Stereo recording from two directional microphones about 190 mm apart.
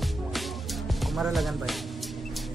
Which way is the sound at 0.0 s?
Centre (ahead or behind).